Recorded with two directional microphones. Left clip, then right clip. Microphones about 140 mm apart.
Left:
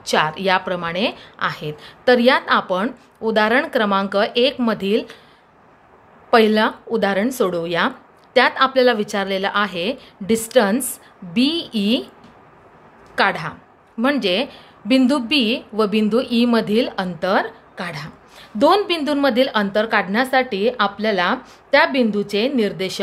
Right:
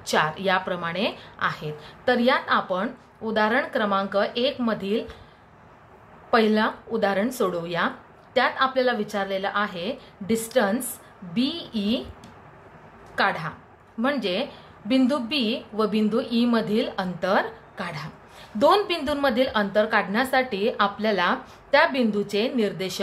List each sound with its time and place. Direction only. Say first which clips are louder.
0.0 s a woman's voice: left 5 dB; 40° left (ahead or behind)
6.3 s a woman's voice: left 6 dB; 50° left (ahead or behind)
13.1 s a woman's voice: left 5 dB; 50° left (ahead or behind)